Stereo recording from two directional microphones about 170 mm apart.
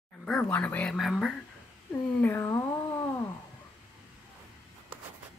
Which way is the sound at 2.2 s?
15° left (ahead or behind).